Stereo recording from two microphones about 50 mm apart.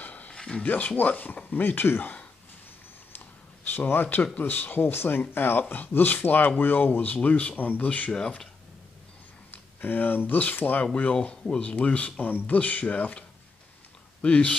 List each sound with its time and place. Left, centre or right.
0.0 s a sound: left
0.3 s a sound: centre
0.7 s speech: left
3.7 s speech: left
9.5 s speech: left
11.1 s speech: centre
11.6 s speech: left
14.2 s speech: left